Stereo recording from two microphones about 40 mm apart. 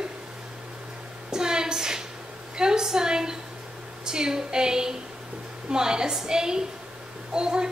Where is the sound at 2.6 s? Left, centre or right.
Centre.